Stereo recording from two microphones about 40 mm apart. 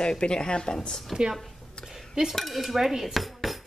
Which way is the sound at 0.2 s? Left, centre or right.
Left.